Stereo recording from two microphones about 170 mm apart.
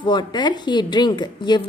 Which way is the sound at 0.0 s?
25° left (ahead or behind).